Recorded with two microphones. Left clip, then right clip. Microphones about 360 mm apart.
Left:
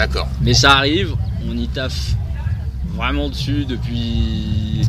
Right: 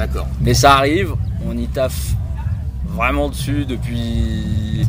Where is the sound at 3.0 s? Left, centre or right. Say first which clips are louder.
Right 4 dB; centre.